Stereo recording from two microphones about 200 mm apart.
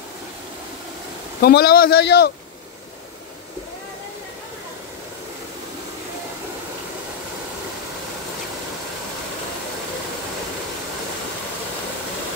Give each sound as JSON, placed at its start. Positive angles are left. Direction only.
{"t": 1.4, "sound": "a man's voice", "side_deg": 50}